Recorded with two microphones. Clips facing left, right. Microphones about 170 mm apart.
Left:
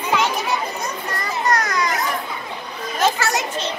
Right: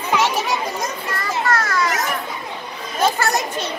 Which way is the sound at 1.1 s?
20° left (ahead or behind).